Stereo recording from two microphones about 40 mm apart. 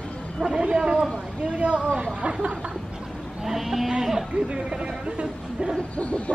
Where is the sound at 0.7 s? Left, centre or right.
Centre.